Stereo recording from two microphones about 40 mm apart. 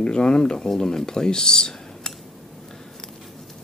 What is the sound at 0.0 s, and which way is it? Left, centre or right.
Speech, left.